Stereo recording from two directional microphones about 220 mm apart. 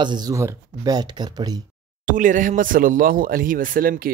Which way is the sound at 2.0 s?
35° right (ahead or behind).